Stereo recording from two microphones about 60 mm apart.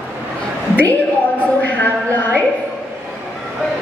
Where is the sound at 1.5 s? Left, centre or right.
Left.